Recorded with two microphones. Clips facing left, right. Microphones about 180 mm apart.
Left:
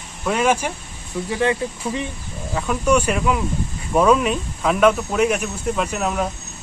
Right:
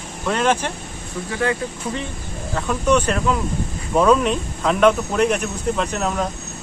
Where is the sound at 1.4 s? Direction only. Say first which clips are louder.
Left 1 dB; 20° left (ahead or behind).